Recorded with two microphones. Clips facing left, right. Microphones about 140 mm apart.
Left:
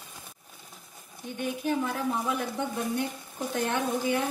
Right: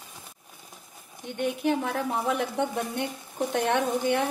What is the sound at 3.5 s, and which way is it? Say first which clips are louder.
Speech: right 3 dB; 70° right (ahead or behind).